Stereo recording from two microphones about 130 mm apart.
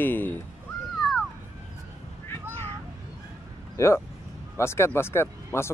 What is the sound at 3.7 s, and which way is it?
Speech, 20° left (ahead or behind).